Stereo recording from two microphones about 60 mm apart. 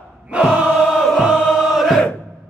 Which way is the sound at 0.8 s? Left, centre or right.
Centre.